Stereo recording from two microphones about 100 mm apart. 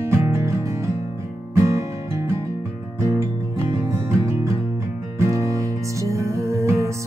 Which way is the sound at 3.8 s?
30° right (ahead or behind).